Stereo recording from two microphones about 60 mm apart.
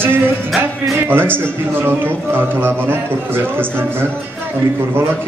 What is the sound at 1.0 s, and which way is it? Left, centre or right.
Speech, right.